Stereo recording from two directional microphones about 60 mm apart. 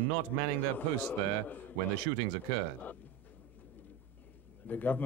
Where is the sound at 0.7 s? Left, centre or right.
Left.